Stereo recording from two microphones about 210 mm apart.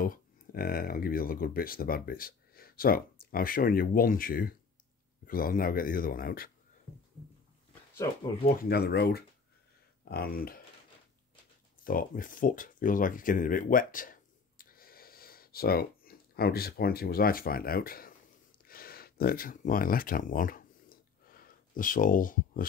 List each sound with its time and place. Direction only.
0.0 s speech: 45° left (ahead or behind)
8.6 s speech: 50° left (ahead or behind)
11.8 s speech: 40° left (ahead or behind)
18.7 s a sound: 45° left (ahead or behind)